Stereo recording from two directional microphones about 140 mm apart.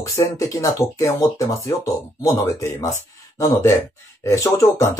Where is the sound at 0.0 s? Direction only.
20° left (ahead or behind).